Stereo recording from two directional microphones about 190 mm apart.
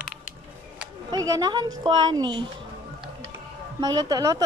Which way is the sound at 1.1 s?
20° right (ahead or behind).